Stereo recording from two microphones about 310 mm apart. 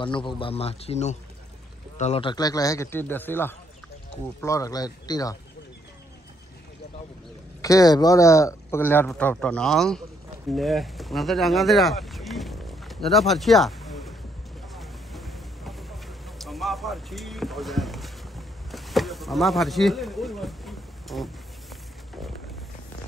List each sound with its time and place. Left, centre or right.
0.0 s a man's voice: centre
7.6 s a man's voice: centre
14.7 s vehicle: centre